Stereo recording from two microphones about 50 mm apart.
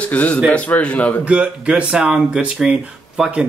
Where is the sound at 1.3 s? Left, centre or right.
Right.